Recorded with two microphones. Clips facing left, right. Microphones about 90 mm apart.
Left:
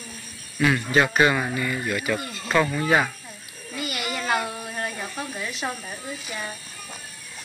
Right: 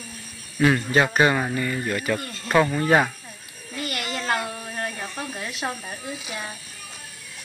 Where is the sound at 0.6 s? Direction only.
30° right (ahead or behind).